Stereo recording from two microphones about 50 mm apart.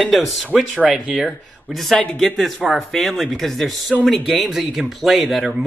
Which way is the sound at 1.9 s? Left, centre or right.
Centre.